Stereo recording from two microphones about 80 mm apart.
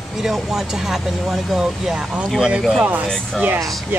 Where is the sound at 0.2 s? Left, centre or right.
Centre.